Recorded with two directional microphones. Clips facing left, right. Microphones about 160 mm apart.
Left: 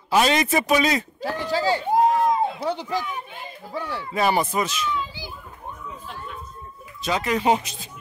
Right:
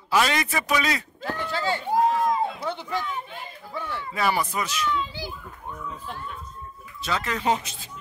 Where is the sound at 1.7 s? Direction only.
15° left (ahead or behind).